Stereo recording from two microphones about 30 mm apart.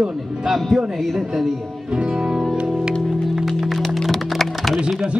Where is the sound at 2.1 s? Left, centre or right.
Centre.